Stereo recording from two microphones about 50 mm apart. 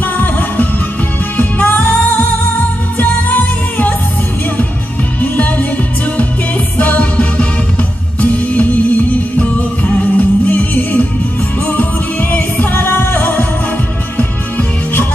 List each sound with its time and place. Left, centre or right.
0.0 s music: left
5.2 s music: left
6.8 s music: left
12.7 s music: left